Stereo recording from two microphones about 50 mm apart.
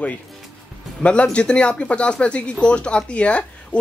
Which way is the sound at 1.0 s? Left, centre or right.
Left.